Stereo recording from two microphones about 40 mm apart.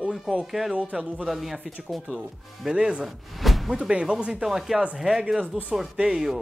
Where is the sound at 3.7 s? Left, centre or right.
Right.